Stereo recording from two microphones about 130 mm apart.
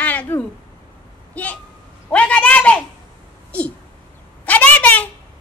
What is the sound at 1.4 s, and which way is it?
A man's voice, 10° left (ahead or behind).